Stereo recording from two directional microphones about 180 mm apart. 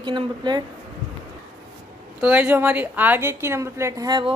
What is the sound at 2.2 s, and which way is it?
A woman's voice, 10° right (ahead or behind).